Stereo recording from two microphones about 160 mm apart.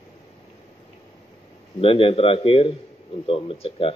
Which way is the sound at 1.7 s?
35° left (ahead or behind).